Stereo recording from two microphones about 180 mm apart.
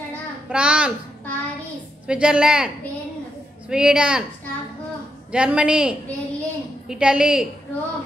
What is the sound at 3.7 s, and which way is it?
Speech, 5° right (ahead or behind).